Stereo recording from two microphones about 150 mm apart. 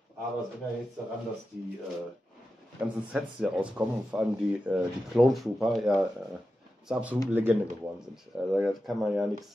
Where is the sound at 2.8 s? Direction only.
10° right (ahead or behind).